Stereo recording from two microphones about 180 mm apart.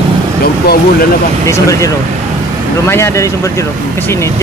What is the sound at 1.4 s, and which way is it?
Speech, 15° left (ahead or behind).